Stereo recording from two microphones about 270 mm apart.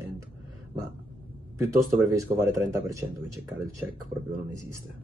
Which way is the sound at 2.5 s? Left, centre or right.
Centre.